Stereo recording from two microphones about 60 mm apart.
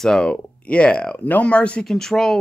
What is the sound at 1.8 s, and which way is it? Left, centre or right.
Speech, centre.